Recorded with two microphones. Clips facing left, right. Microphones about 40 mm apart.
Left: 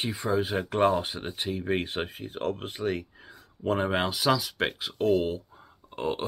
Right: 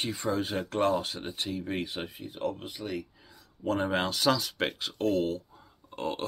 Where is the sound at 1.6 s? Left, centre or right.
Left.